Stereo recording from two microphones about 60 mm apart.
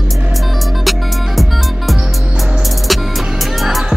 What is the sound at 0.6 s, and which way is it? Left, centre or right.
Music, centre.